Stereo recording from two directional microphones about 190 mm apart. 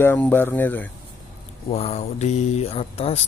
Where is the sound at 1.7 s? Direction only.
35° left (ahead or behind).